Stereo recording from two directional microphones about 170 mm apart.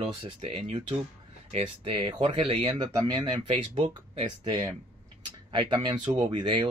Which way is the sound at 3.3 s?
35° right (ahead or behind).